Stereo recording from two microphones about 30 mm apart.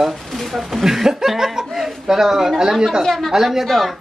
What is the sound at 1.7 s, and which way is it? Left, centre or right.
Speech, centre.